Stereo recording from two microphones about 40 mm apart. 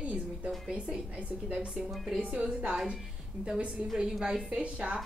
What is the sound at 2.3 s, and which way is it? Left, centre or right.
Speech, right.